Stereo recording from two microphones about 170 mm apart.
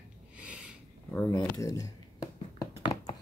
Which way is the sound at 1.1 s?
10° left (ahead or behind).